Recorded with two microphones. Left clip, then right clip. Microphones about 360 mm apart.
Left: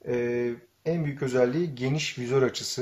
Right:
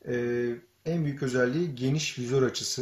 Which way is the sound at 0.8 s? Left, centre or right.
Centre.